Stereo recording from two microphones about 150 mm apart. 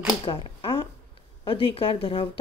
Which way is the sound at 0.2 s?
35° left (ahead or behind).